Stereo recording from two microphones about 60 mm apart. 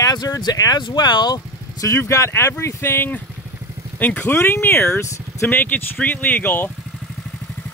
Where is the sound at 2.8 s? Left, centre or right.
Left.